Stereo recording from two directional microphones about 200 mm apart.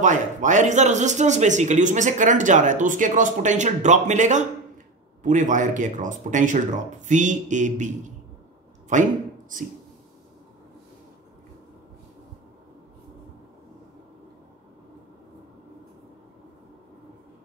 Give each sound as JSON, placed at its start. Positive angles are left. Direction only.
{"t": 0.0, "sound": "speech", "side_deg": -40}